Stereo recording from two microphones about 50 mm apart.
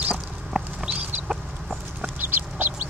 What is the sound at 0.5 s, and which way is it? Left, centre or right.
Chicken, right.